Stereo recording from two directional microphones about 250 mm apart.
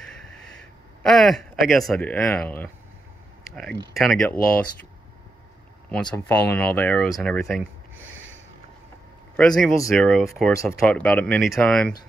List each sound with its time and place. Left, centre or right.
1.0 s speech: centre
3.9 s speech: centre
6.0 s speech: centre
7.9 s a sound: right
9.4 s speech: centre